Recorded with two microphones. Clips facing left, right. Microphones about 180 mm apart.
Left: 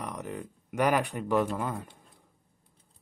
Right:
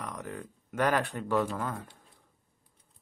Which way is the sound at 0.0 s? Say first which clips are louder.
Left 2 dB; 15° left (ahead or behind).